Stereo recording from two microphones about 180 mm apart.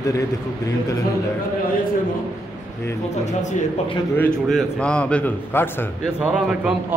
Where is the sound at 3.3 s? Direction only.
40° left (ahead or behind).